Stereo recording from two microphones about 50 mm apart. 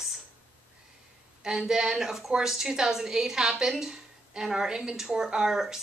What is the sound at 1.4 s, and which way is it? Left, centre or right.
A woman's voice, centre.